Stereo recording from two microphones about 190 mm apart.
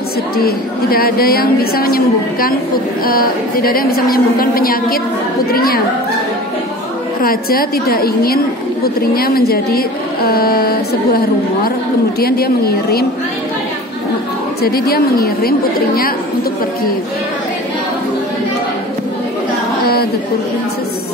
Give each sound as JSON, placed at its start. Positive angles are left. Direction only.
{"t": 0.4, "sound": "a woman's voice", "side_deg": 50}
{"t": 7.2, "sound": "a woman's voice", "side_deg": 50}
{"t": 14.6, "sound": "a woman's voice", "side_deg": 55}